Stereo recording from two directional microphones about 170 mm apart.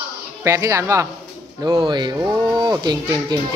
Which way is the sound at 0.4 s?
15° right (ahead or behind).